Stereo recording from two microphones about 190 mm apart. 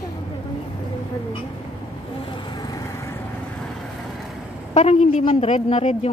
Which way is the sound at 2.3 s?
25° left (ahead or behind).